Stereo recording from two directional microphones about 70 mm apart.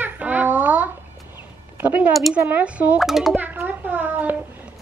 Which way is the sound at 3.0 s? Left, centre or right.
Centre.